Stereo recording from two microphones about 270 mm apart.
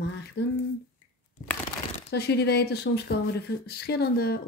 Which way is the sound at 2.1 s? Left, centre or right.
Left.